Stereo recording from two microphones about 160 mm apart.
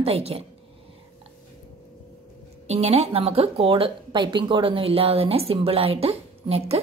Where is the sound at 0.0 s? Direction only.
40° right (ahead or behind).